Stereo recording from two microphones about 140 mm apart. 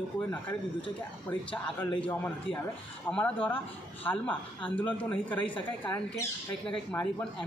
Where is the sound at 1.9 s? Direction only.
10° left (ahead or behind).